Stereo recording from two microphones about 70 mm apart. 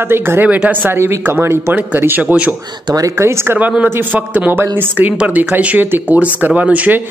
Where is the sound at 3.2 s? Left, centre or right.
Right.